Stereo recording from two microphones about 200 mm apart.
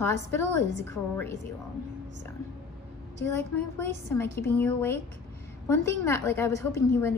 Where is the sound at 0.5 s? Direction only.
60° right (ahead or behind).